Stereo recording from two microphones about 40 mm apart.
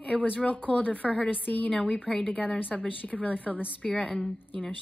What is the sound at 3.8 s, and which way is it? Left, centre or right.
Speech, left.